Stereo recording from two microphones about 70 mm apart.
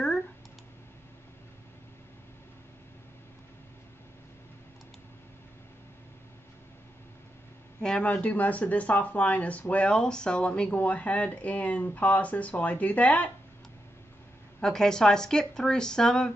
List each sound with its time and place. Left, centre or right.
7.8 s speech: centre
14.6 s speech: centre